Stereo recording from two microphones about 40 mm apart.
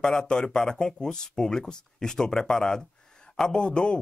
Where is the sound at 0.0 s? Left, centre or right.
Left.